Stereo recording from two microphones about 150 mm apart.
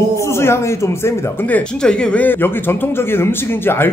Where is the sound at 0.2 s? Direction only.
15° left (ahead or behind).